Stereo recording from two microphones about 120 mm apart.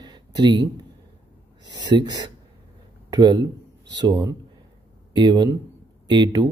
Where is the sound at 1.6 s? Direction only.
35° right (ahead or behind).